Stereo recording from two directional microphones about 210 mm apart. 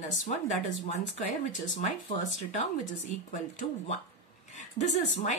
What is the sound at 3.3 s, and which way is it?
Speech, 35° left (ahead or behind).